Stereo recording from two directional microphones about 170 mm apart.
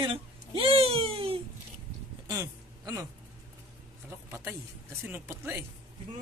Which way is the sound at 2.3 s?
20° right (ahead or behind).